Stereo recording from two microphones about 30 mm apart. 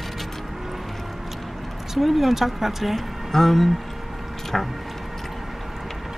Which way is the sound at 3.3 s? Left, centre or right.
Centre.